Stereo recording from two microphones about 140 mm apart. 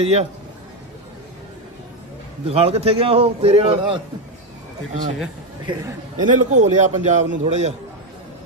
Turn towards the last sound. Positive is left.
turn(degrees=-55)  # may be behind; listen again after turning